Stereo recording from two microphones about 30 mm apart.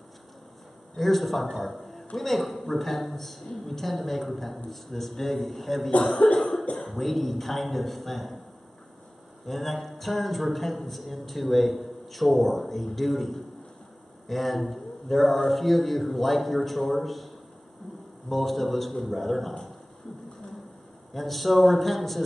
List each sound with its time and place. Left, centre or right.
0.9 s a man's voice: centre
5.9 s speech: left
6.8 s a man's voice: centre
9.5 s a man's voice: centre
18.3 s a man's voice: centre
21.1 s a man's voice: centre